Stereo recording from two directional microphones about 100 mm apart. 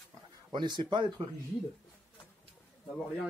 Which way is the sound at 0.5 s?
50° right (ahead or behind).